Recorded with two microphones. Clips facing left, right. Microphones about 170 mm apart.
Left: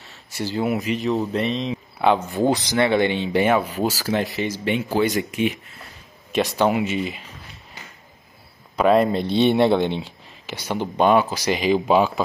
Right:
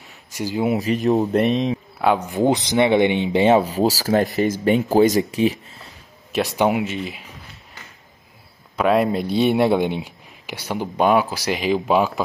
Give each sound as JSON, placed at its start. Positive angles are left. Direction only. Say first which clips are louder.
{"t": 0.0, "sound": "a sound", "louder": "right 1 dB", "side_deg": -10}
{"t": 0.7, "sound": "speech", "louder": "right 4 dB", "side_deg": -40}
{"t": 1.4, "sound": "speech", "louder": "right 5 dB", "side_deg": 0}
{"t": 2.1, "sound": "speech", "louder": "right 2 dB", "side_deg": -15}
{"t": 3.6, "sound": "speech", "louder": "right 4 dB", "side_deg": -40}
{"t": 6.5, "sound": "speech", "louder": "right 1 dB", "side_deg": -15}
{"t": 6.8, "sound": "speech", "louder": "left 2 dB", "side_deg": 0}
{"t": 8.7, "sound": "speech", "louder": "left 1 dB", "side_deg": 0}